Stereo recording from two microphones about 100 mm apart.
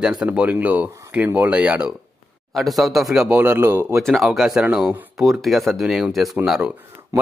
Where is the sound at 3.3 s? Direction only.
20° right (ahead or behind).